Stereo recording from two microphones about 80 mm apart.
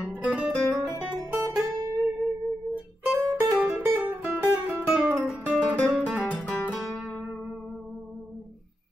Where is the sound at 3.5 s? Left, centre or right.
Centre.